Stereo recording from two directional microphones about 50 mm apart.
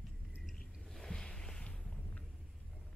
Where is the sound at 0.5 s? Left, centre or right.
Centre.